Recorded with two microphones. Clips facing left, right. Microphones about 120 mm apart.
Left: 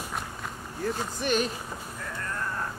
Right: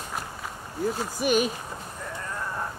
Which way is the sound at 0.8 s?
10° right (ahead or behind).